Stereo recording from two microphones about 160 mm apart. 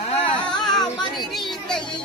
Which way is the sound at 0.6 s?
25° left (ahead or behind).